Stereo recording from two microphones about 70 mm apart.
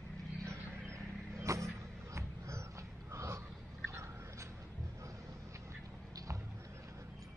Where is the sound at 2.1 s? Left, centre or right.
Right.